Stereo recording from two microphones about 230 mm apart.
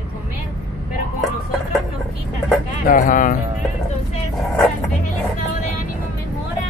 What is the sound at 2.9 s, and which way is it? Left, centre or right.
Speech, left.